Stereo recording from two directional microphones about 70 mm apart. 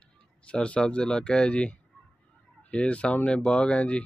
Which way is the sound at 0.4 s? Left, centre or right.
Centre.